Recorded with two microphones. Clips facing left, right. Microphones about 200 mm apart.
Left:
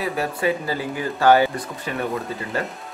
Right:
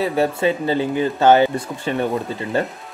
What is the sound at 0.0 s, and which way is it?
A man's voice, 25° right (ahead or behind).